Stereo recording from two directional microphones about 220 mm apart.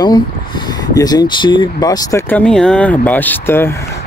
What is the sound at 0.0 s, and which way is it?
Speech, 20° left (ahead or behind).